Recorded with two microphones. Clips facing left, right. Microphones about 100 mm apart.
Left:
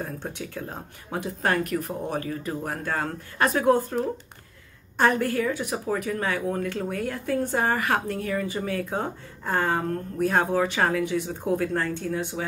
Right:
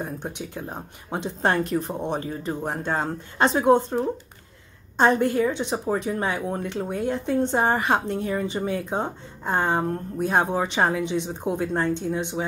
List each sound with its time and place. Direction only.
0.0 s speech: 20° right (ahead or behind)